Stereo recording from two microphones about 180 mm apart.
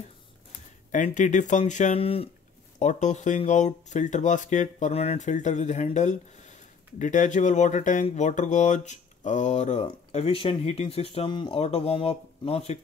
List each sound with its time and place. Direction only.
0.9 s speech: 45° left (ahead or behind)